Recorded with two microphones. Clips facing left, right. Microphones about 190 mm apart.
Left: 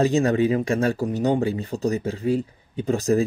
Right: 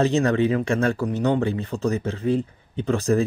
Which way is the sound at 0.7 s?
40° left (ahead or behind).